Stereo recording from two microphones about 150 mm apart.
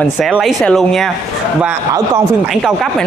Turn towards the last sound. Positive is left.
turn(degrees=0)  # may be behind; listen again after turning